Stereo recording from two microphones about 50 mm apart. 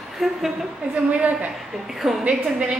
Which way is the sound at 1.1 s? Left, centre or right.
Right.